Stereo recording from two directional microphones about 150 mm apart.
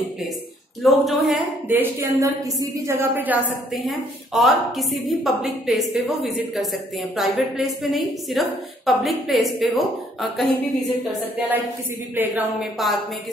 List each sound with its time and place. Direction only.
0.8 s a woman's voice: centre (ahead or behind)
1.7 s a woman's voice: 15° right (ahead or behind)
3.7 s a woman's voice: centre (ahead or behind)
11.3 s a woman's voice: 10° right (ahead or behind)
12.7 s a woman's voice: centre (ahead or behind)